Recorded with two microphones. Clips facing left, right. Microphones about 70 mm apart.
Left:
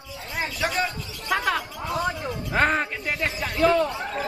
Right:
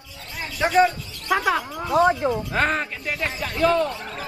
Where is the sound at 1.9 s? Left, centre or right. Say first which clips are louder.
Right 9 dB; right.